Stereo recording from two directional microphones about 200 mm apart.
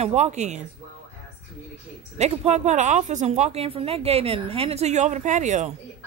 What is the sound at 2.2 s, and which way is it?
Speech, 30° right (ahead or behind).